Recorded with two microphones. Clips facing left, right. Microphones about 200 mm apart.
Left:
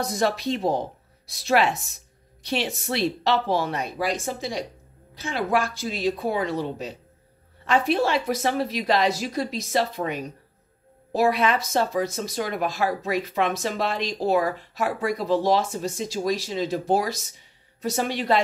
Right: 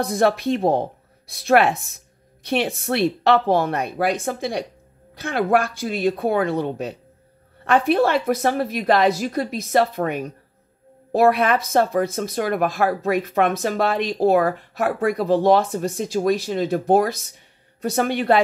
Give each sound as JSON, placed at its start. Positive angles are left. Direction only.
{"t": 0.0, "sound": "a woman's voice", "side_deg": -55}